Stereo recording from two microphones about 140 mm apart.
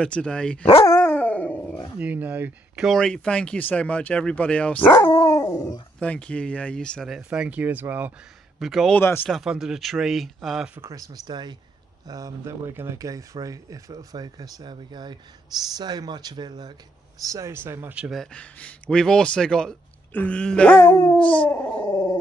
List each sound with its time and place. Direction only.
0.0 s speech: 10° left (ahead or behind)
0.8 s dog: 15° left (ahead or behind)
2.0 s speech: 10° right (ahead or behind)
2.8 s speech: 5° left (ahead or behind)
5.0 s dog: 25° left (ahead or behind)
5.9 s speech: 10° left (ahead or behind)
7.2 s speech: 10° right (ahead or behind)
8.5 s speech: centre (ahead or behind)
8.9 s speech: 15° left (ahead or behind)
9.3 s speech: 5° right (ahead or behind)
10.7 s speech: 20° right (ahead or behind); by 21.8 s 10° left (ahead or behind)
21.8 s dog: 25° left (ahead or behind)